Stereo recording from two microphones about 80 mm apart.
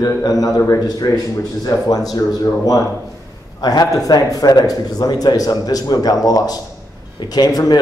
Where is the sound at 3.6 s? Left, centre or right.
Left.